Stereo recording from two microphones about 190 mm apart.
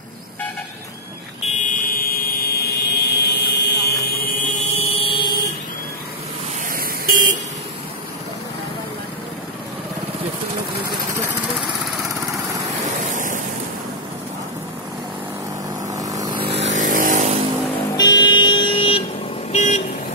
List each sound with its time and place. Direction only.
1.4 s fire alarm: 45° left (ahead or behind); by 3.9 s 60° left (ahead or behind)
4.0 s a sound: 55° left (ahead or behind)
4.7 s vehicle: 30° left (ahead or behind)
6.7 s vehicle: 50° right (ahead or behind)
10.9 s vehicle: 15° right (ahead or behind)
12.9 s waves: 40° right (ahead or behind)
15.9 s vehicle: 20° right (ahead or behind)
16.4 s vehicle: 35° right (ahead or behind)
17.9 s vehicle: 20° left (ahead or behind)
19.5 s vehicle: 40° left (ahead or behind)